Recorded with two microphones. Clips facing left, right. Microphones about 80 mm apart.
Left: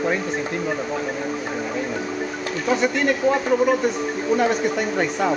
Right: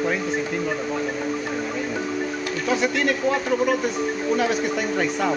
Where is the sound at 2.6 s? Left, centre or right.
Centre.